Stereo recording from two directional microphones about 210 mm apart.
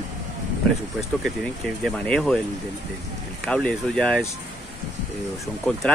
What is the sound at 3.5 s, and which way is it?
Speech, 5° left (ahead or behind).